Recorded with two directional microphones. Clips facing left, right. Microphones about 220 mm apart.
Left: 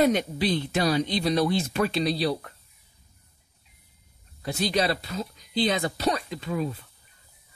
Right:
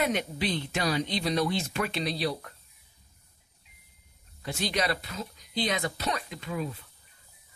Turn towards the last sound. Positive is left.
turn(degrees=35)  # may be behind; listen again after turning